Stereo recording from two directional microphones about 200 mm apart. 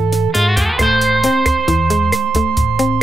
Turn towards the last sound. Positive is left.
turn(degrees=0)  # may be behind; listen again after turning